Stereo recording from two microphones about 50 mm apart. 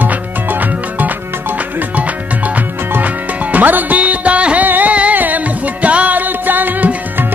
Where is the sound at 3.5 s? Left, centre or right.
Right.